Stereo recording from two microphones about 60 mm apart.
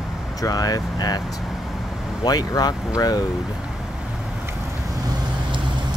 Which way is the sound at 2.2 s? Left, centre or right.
Left.